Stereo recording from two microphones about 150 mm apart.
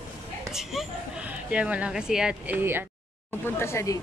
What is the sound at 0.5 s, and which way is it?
Speech, 5° right (ahead or behind).